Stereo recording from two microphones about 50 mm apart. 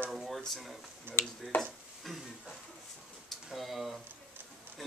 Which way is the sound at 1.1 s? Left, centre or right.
Right.